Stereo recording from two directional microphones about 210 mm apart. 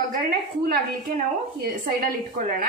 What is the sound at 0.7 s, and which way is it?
A woman's voice, 45° right (ahead or behind).